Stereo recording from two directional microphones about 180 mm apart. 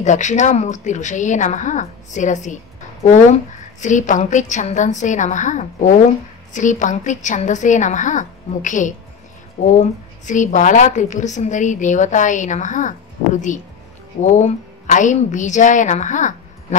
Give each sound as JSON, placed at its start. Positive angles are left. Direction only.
{"t": 0.0, "sound": "a woman's voice", "side_deg": 40}
{"t": 3.8, "sound": "a woman's voice", "side_deg": 45}